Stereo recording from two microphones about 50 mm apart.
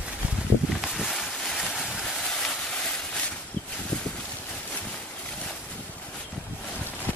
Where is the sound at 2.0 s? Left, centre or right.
Centre.